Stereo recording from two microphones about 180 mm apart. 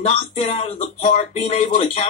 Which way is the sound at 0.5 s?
40° left (ahead or behind).